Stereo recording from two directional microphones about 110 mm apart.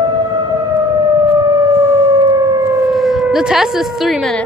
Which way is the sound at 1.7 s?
25° right (ahead or behind).